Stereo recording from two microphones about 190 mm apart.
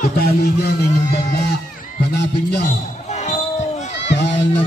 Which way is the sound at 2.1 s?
60° left (ahead or behind).